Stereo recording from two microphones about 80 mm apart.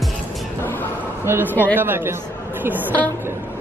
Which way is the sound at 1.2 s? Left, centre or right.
Right.